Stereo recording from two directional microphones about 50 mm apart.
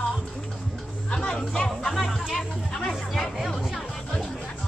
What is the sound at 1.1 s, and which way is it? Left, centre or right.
Music, centre.